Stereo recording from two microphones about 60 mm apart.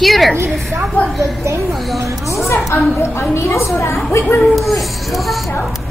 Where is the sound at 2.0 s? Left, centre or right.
Right.